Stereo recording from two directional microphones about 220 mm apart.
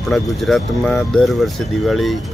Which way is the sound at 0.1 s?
Centre (ahead or behind).